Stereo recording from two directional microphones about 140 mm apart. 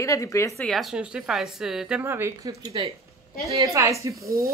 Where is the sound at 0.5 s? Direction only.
Centre (ahead or behind).